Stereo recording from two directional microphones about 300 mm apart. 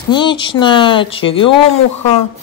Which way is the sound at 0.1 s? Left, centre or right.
Centre.